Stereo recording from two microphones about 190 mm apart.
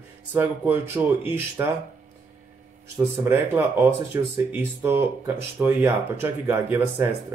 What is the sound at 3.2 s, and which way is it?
Speech, 10° right (ahead or behind).